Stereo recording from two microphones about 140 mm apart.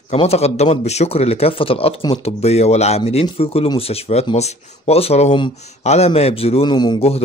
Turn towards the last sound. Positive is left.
turn(degrees=45)  # may be behind; listen again after turning